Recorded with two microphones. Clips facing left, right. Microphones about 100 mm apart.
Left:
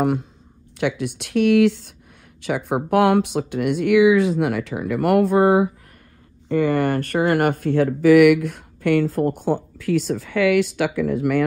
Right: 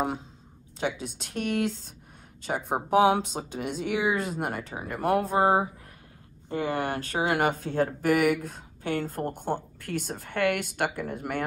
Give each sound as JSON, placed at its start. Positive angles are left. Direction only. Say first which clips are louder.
{"t": 0.0, "sound": "speech", "louder": "left 9 dB", "side_deg": 60}
{"t": 6.5, "sound": "speech", "louder": "left 9 dB", "side_deg": 60}
{"t": 7.7, "sound": "speech", "louder": "left 14 dB", "side_deg": 90}